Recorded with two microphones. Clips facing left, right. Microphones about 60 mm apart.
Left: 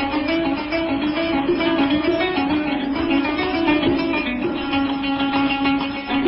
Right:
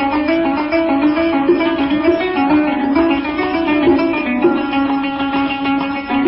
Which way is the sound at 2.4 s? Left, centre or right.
Right.